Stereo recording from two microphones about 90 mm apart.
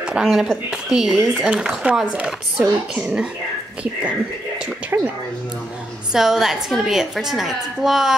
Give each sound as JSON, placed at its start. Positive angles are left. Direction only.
{"t": 0.0, "sound": "a woman's voice", "side_deg": -5}
{"t": 4.9, "sound": "speech", "side_deg": -20}
{"t": 6.1, "sound": "a woman's voice", "side_deg": -5}